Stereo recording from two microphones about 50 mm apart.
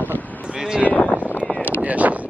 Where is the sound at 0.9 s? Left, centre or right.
Left.